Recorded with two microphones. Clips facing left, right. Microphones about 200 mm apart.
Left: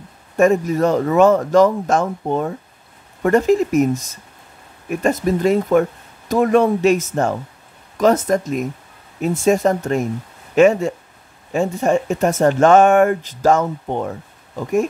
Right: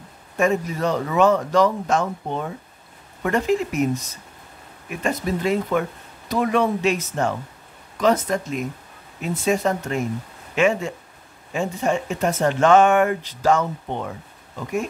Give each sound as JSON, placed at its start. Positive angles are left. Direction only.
{"t": 0.4, "sound": "speech", "side_deg": 45}